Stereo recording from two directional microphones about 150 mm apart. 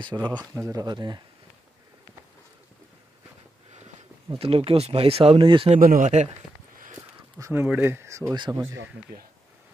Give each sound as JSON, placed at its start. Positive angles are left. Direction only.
{"t": 0.0, "sound": "speech", "side_deg": -30}
{"t": 4.4, "sound": "speech", "side_deg": -40}
{"t": 5.8, "sound": "speech", "side_deg": -65}
{"t": 7.0, "sound": "a sound", "side_deg": -20}
{"t": 7.6, "sound": "speech", "side_deg": -10}